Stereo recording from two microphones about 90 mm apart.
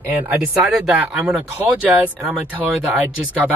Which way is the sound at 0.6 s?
5° right (ahead or behind).